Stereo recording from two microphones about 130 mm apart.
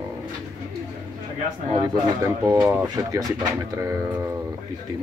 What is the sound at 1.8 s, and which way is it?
A man's voice, 30° right (ahead or behind).